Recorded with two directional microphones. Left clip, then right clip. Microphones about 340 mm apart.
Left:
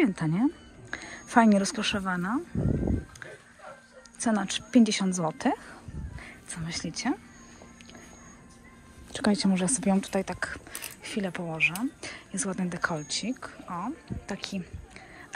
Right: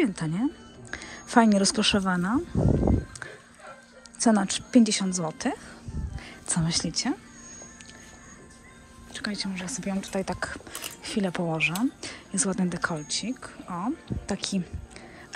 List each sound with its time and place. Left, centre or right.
0.0 s speech: centre
4.2 s a woman's voice: centre
9.1 s speech: centre